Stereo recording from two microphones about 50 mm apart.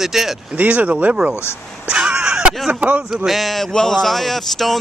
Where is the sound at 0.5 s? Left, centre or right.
Right.